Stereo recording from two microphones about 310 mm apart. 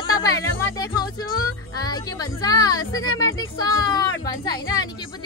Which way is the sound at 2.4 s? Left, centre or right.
Centre.